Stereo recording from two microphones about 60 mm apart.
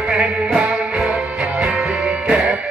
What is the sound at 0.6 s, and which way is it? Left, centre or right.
Music, centre.